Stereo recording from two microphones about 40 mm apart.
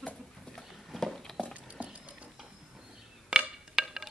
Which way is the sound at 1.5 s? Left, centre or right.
Right.